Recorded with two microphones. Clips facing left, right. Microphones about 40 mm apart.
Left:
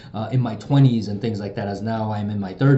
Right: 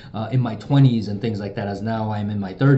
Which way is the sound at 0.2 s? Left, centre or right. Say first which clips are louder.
Even; centre.